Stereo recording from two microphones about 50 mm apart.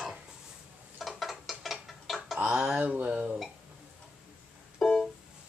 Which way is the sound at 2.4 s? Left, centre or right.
Right.